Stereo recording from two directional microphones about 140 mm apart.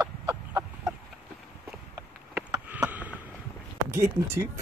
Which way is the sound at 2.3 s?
10° right (ahead or behind).